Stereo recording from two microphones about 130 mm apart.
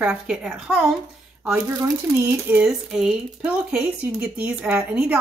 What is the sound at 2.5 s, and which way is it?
Speech, 15° right (ahead or behind).